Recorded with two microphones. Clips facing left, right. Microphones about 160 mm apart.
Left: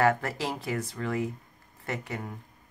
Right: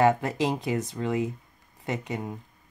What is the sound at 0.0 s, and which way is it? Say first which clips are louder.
Speech: right 3 dB; 20° right (ahead or behind).